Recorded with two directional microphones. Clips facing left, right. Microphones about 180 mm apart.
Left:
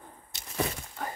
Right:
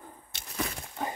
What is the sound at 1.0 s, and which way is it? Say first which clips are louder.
Clip-clop: right 3 dB; 20° right (ahead or behind).